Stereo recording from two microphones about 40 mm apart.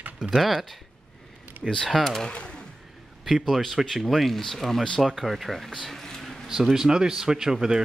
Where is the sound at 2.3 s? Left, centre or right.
Left.